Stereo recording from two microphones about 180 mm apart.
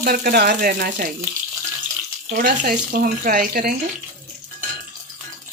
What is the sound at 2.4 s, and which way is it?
Speech, 50° right (ahead or behind).